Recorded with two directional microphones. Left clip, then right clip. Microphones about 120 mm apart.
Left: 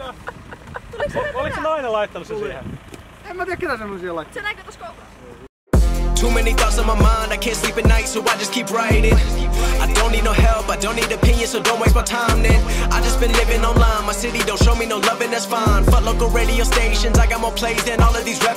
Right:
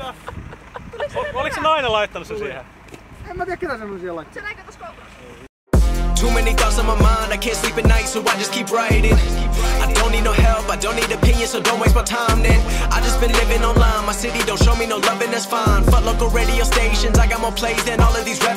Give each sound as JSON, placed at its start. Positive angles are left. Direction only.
{"t": 1.1, "sound": "speech", "side_deg": -5}
{"t": 1.6, "sound": "speech", "side_deg": -20}
{"t": 2.1, "sound": "music", "side_deg": -5}
{"t": 3.3, "sound": "speech", "side_deg": 50}
{"t": 5.7, "sound": "music", "side_deg": 0}